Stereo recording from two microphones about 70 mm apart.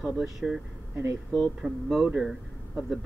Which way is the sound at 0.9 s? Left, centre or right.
Right.